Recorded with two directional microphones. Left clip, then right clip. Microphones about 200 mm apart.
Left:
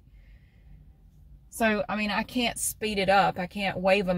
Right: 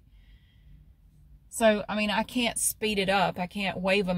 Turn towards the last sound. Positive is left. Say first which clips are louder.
# left 2 dB
turn(degrees=-10)  # may be behind; listen again after turning